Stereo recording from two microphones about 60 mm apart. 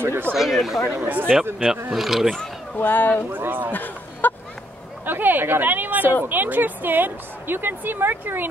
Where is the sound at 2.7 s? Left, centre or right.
Left.